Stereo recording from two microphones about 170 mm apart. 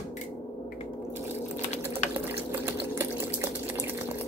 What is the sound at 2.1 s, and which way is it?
Water, 15° right (ahead or behind).